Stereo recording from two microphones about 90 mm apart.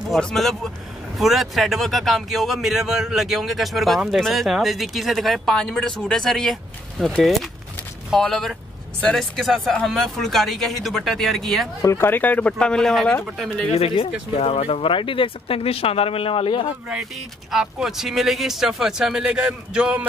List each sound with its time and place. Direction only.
0.1 s speech: 5° left (ahead or behind)
11.8 s speech: 35° left (ahead or behind)
12.1 s speech: 20° left (ahead or behind)
14.4 s speech: 90° left
17.5 s a man's voice: 5° right (ahead or behind)